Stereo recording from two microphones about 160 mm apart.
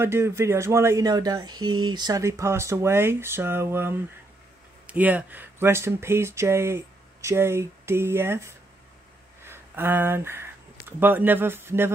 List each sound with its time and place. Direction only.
0.0 s speech: 15° right (ahead or behind)